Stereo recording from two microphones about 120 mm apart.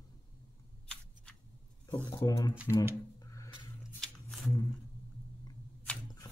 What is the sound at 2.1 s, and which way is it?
Speech, 25° left (ahead or behind).